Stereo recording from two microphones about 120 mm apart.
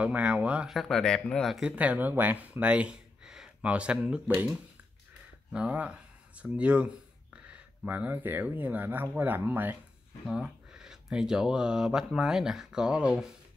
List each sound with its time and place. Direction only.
0.0 s speech: 10° right (ahead or behind)
1.8 s speech: 15° right (ahead or behind)
10.2 s speech: 5° right (ahead or behind)